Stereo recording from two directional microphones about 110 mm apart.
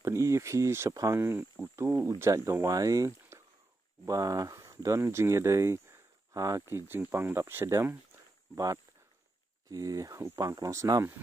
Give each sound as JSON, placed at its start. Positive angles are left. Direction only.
{"t": 0.0, "sound": "speech", "side_deg": -25}
{"t": 9.7, "sound": "speech", "side_deg": -35}